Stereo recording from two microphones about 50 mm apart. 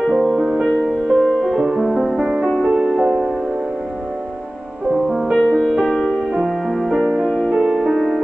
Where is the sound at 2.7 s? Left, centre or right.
Right.